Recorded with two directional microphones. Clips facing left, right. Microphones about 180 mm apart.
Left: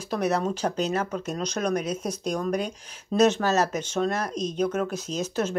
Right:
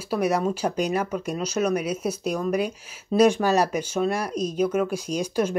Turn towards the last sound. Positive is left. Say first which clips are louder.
# right 3 dB
turn(degrees=-10)  # may be behind; listen again after turning